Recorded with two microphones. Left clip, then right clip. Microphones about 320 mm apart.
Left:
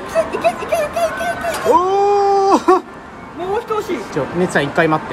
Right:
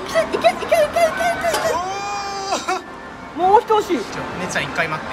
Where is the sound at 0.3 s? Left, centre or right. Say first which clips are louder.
Right 1 dB; centre.